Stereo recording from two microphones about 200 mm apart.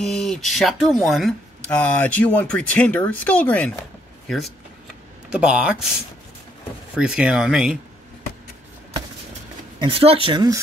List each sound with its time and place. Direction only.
0.0 s speech: centre (ahead or behind)
5.4 s speech: 5° right (ahead or behind)
7.0 s speech: 5° right (ahead or behind)
9.8 s speech: 25° right (ahead or behind)